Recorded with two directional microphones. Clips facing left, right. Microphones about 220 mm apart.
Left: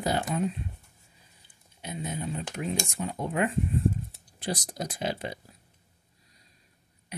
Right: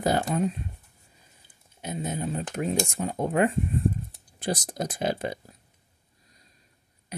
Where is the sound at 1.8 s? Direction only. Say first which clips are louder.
Right 4 dB; 45° right (ahead or behind).